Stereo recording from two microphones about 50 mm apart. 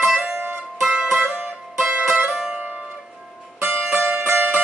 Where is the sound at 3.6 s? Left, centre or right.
Right.